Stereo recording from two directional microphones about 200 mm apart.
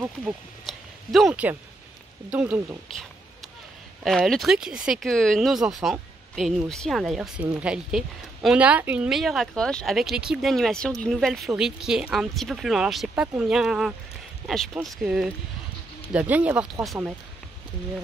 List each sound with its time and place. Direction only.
0.0 s speech: 5° right (ahead or behind)